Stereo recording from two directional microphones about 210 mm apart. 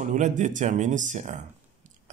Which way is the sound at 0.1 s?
35° right (ahead or behind).